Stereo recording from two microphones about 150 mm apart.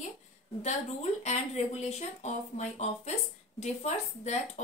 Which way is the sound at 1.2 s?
50° left (ahead or behind).